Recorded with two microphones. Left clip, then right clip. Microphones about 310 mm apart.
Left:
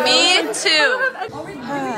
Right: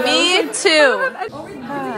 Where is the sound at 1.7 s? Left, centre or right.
Centre.